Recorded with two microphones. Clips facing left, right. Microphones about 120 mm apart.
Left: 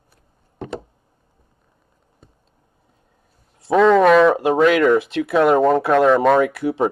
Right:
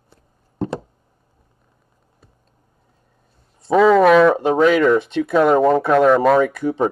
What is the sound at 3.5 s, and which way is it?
Speech, centre (ahead or behind).